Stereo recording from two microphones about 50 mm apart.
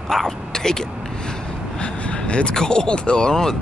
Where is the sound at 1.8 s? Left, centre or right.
Left.